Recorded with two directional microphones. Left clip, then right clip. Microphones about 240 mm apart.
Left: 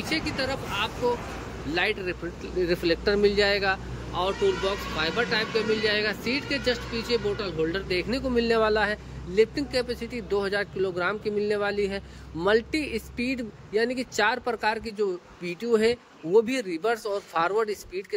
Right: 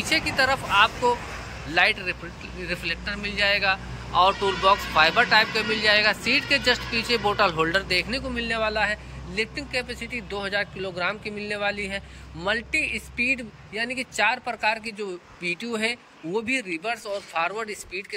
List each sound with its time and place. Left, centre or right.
0.0 s speech: centre